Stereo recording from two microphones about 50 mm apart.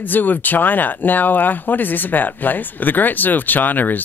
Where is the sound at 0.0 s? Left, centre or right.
Left.